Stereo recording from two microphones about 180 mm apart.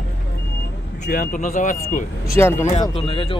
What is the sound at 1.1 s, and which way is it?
Speech, 50° left (ahead or behind).